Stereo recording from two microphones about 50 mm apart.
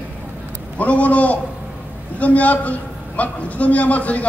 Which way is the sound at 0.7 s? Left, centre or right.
Left.